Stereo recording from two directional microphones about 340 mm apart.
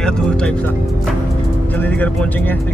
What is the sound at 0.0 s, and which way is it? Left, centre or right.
A man's voice, centre.